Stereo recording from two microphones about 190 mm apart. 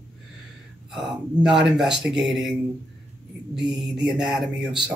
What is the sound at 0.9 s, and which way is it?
Speech, 5° right (ahead or behind).